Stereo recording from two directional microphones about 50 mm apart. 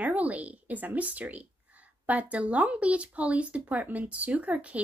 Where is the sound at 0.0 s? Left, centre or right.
Right.